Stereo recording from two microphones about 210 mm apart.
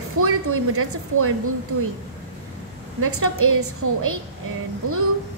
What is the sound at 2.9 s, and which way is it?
A woman's voice, 90° right.